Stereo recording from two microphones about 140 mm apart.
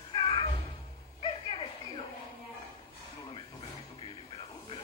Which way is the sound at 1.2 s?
40° left (ahead or behind).